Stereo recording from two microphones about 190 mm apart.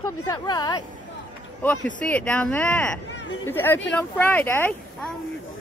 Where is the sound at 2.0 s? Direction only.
5° left (ahead or behind).